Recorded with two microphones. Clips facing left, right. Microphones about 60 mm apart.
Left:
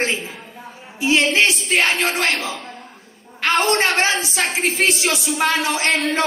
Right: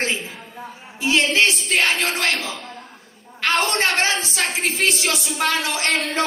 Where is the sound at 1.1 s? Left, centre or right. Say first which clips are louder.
Left 1 dB; left.